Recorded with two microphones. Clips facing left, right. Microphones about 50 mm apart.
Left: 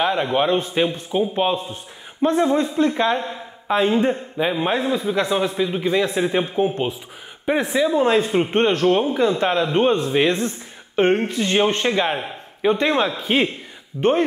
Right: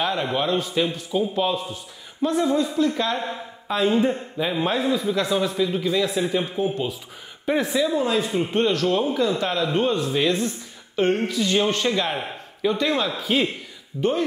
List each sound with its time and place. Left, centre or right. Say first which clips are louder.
0.0 s a man's voice: left 4 dB; centre; by 7.0 s left
7.4 s a man's voice: left 2 dB; left
8.0 s a man's voice: left 5 dB; left
14.0 s speech: left 5 dB; left